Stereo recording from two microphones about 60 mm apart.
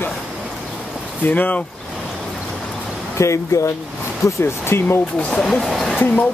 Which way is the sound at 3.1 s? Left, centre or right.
Left.